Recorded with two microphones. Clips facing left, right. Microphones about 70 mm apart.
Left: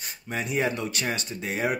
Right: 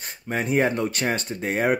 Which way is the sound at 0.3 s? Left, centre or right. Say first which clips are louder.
Right 5 dB; right.